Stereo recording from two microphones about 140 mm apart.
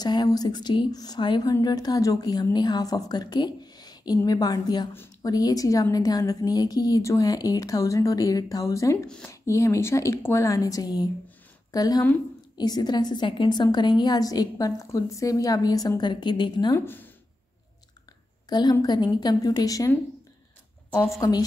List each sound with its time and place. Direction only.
0.0 s a woman's voice: 30° left (ahead or behind)
8.9 s speech: 5° left (ahead or behind)
9.3 s a woman's voice: 20° left (ahead or behind)
16.7 s speech: 15° left (ahead or behind)
18.5 s a woman's voice: 30° left (ahead or behind)
21.2 s a woman's voice: 25° left (ahead or behind)